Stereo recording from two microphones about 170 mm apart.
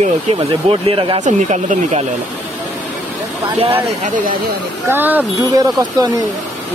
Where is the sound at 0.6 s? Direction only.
35° right (ahead or behind).